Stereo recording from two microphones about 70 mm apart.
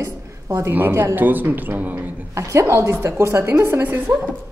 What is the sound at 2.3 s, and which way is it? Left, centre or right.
A woman's voice, right.